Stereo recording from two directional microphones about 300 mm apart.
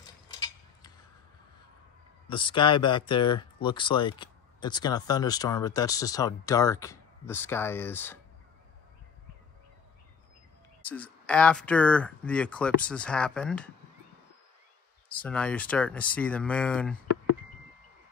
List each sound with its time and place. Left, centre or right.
0.3 s mechanisms: centre
2.2 s speech: centre
10.8 s speech: centre
15.1 s speech: centre